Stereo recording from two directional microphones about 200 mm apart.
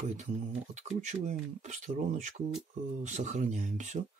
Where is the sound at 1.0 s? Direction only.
35° right (ahead or behind).